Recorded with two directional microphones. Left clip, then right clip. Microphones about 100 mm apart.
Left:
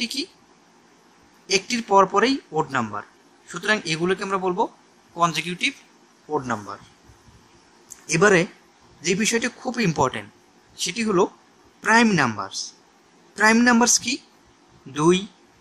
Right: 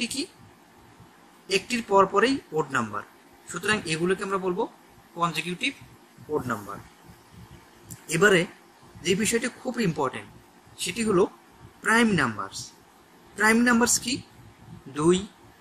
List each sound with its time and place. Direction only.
0.0 s speech: 60° left (ahead or behind)
1.5 s speech: 60° left (ahead or behind)
5.1 s a man's voice: 85° left
8.1 s a man's voice: 60° left (ahead or behind)